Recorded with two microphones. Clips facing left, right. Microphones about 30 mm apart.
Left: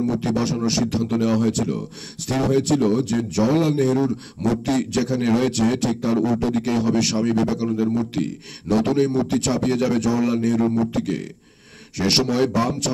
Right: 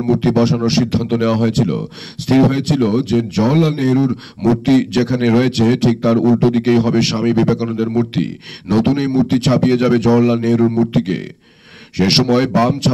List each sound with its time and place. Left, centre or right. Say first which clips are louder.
0.0 s speech: right 8 dB; right